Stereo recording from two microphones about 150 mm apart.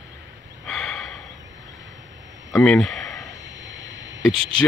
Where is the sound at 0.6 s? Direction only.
Centre (ahead or behind).